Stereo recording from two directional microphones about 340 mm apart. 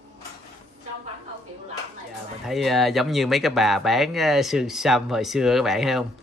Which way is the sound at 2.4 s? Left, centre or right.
Centre.